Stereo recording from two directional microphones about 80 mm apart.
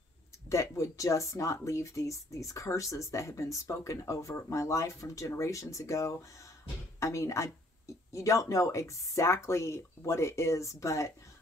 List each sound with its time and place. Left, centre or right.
0.5 s speech: left